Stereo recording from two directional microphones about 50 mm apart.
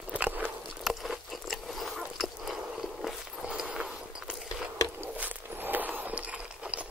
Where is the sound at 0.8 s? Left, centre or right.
Centre.